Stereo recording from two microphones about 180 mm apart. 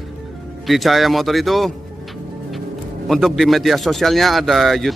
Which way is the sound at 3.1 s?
Centre (ahead or behind).